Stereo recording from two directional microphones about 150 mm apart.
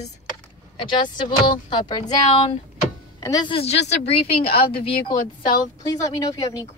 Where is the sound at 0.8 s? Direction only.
30° left (ahead or behind).